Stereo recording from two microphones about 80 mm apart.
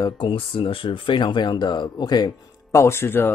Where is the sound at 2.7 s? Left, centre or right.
Left.